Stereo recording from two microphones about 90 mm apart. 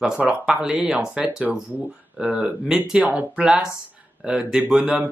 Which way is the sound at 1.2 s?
20° right (ahead or behind).